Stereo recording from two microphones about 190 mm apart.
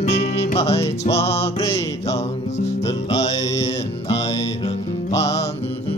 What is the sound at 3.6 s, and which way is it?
Music, 30° left (ahead or behind).